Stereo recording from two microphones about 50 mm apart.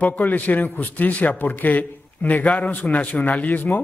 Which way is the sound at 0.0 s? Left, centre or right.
Left.